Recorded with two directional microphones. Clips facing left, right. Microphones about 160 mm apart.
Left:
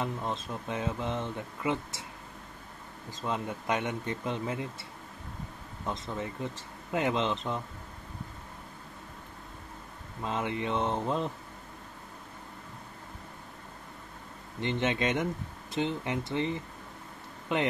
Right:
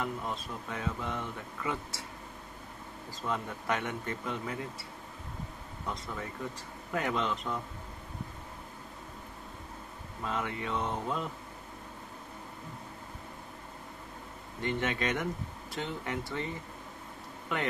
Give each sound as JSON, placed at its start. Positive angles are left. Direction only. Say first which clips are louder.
{"t": 0.0, "sound": "speech", "louder": "left 2 dB", "side_deg": 25}
{"t": 3.1, "sound": "speech", "louder": "left 2 dB", "side_deg": 20}
{"t": 5.9, "sound": "speech", "louder": "left 4 dB", "side_deg": 25}
{"t": 10.2, "sound": "speech", "louder": "left 3 dB", "side_deg": 25}
{"t": 14.6, "sound": "speech", "louder": "left 3 dB", "side_deg": 20}